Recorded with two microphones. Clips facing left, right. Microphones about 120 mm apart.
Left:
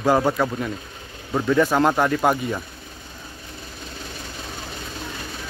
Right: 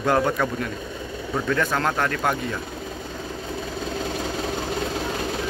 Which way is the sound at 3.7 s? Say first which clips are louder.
Right 9 dB; 90° right.